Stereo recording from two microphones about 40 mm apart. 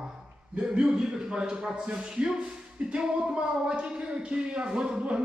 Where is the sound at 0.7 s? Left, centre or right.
Right.